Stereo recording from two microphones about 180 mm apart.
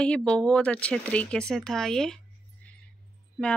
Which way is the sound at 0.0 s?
5° left (ahead or behind).